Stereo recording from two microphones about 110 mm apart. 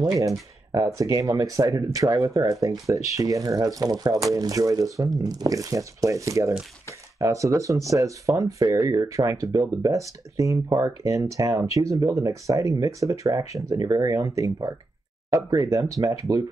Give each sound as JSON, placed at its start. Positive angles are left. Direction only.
{"t": 0.2, "sound": "speech", "side_deg": -30}